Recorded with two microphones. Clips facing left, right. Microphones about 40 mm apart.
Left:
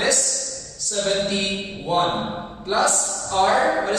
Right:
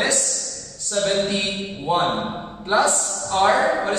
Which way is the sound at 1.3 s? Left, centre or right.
Right.